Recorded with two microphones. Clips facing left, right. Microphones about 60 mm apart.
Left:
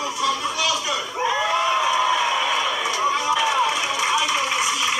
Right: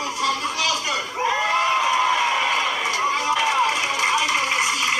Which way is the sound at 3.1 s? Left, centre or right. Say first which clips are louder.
Even; right.